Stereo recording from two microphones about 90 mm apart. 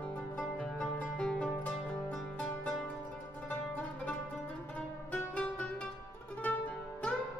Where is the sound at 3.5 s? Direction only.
15° left (ahead or behind).